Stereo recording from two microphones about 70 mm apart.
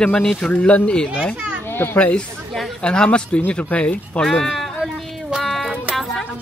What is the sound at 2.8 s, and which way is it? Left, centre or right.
Speech, centre.